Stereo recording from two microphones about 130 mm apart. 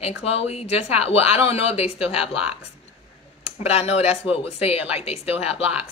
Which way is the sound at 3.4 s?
50° left (ahead or behind).